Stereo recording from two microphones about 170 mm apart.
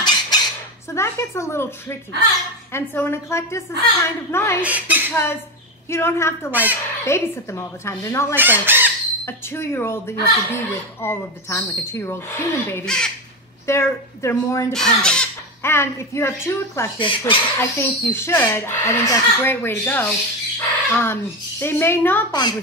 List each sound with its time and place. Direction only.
0.0 s squawk: 25° left (ahead or behind)
0.9 s speech: 15° left (ahead or behind)
4.6 s speech: 10° right (ahead or behind)
5.1 s speech: 15° left (ahead or behind)
6.5 s speech: 10° right (ahead or behind)
7.1 s speech: 15° left (ahead or behind)
8.4 s chicken: 10° right (ahead or behind)
9.2 s speech: 15° left (ahead or behind)
13.7 s speech: 15° left (ahead or behind)
14.7 s speech: 5° left (ahead or behind)
22.3 s a child's voice: 25° left (ahead or behind)